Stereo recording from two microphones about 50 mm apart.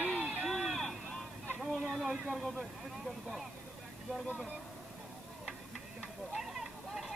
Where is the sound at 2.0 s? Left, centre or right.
Right.